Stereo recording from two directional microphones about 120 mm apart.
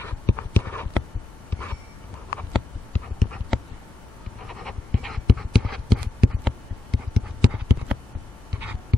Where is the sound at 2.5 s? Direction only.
10° left (ahead or behind).